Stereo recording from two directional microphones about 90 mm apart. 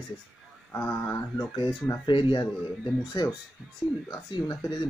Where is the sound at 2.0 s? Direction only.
65° left (ahead or behind).